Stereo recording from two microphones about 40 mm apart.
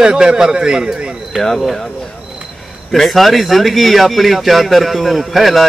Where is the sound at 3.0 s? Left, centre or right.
Centre.